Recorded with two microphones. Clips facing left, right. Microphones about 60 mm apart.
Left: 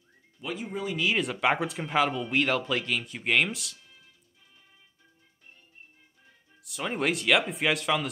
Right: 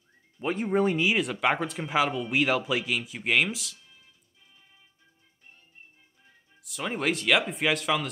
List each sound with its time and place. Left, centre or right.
0.4 s speech: right
0.7 s speech: right
1.1 s speech: centre
6.6 s speech: centre